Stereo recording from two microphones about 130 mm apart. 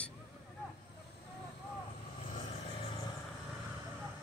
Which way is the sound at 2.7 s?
40° left (ahead or behind).